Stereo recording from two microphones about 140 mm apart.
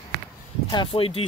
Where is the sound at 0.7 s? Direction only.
40° left (ahead or behind).